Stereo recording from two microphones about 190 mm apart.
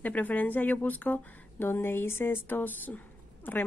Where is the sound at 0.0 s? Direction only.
10° left (ahead or behind).